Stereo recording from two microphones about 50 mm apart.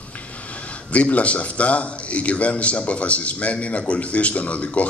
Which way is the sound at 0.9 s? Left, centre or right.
Left.